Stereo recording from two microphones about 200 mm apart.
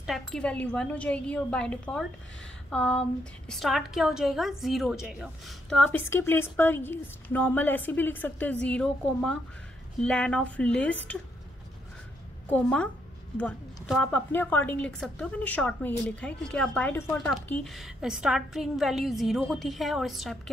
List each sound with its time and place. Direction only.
0.0 s a woman's voice: centre (ahead or behind)
12.4 s a woman's voice: 10° left (ahead or behind)